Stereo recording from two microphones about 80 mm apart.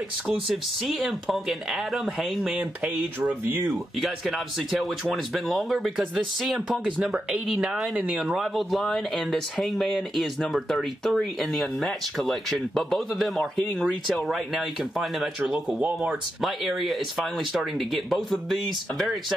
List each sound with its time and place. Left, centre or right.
0.8 s speech: centre
3.4 s speech: right
4.0 s speech: centre
7.9 s speech: centre
16.3 s speech: centre